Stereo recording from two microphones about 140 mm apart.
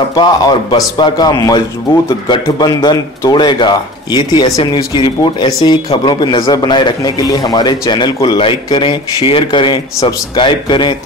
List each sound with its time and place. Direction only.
0.1 s speech: 30° left (ahead or behind)